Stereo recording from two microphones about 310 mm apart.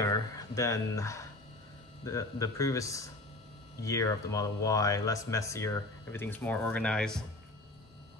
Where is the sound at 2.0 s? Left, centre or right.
Centre.